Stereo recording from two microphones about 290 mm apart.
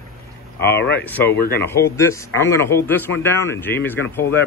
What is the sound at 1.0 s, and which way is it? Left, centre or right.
A man's voice, centre.